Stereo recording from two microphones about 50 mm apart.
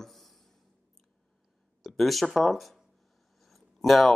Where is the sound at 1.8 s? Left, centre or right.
Centre.